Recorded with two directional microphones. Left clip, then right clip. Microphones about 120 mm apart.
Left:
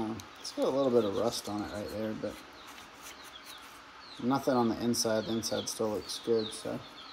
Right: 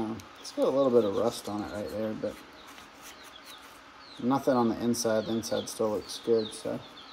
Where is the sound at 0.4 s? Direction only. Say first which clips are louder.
Right 4 dB; 15° left (ahead or behind).